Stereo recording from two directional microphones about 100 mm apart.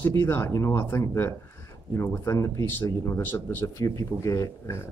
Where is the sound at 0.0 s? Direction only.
20° left (ahead or behind).